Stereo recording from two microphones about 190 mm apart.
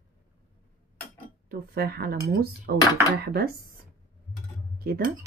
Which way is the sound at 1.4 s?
55° right (ahead or behind).